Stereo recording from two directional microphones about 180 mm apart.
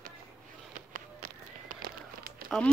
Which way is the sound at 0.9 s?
50° right (ahead or behind).